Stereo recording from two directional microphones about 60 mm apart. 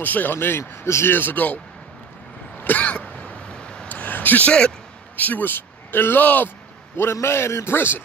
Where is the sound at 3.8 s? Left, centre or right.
Left.